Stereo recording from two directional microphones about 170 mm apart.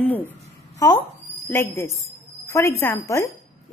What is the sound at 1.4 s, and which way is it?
A woman's voice, 15° left (ahead or behind).